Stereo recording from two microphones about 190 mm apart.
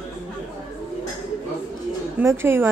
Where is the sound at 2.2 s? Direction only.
15° right (ahead or behind).